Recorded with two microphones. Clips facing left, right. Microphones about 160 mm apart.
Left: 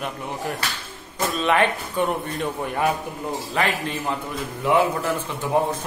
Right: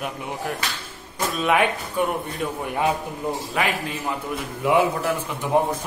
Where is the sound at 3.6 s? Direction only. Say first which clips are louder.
Left 3 dB; 5° right (ahead or behind).